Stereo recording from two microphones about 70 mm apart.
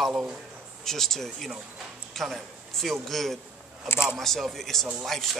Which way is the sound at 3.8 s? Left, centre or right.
Left.